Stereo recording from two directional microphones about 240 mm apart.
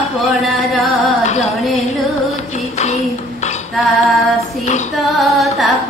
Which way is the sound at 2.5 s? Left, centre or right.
Left.